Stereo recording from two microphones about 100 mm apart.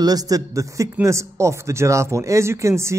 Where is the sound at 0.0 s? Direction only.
40° right (ahead or behind).